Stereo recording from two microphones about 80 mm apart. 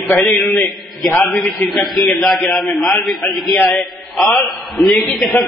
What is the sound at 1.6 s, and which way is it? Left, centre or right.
A man's voice, centre.